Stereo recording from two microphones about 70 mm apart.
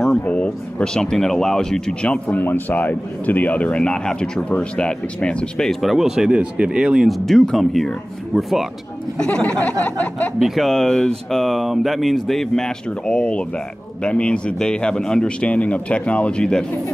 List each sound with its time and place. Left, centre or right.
0.2 s speech: centre
7.2 s speech: centre
9.2 s speech: centre
10.4 s speech: centre